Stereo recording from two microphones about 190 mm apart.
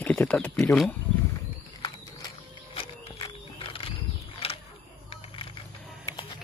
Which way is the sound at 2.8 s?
25° left (ahead or behind).